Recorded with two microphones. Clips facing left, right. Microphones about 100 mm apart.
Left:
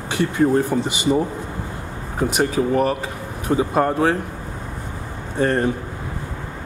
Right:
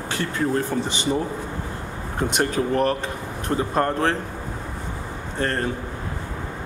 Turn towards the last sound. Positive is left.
turn(degrees=15)  # may be behind; listen again after turning